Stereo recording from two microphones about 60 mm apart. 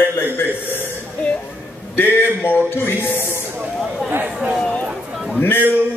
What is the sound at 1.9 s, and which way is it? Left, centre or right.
Speech, left.